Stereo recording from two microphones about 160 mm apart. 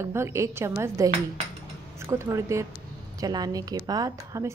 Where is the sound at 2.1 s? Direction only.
15° right (ahead or behind).